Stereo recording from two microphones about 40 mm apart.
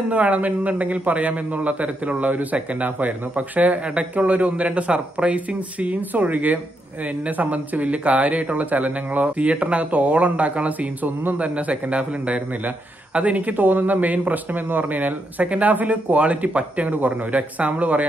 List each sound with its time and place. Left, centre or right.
0.1 s speech: right